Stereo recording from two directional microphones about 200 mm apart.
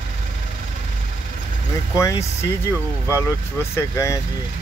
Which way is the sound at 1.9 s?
15° left (ahead or behind).